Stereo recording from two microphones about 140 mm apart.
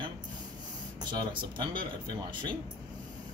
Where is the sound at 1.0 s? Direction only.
35° right (ahead or behind).